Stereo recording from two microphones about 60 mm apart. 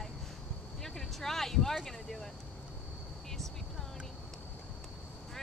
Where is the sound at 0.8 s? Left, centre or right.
Centre.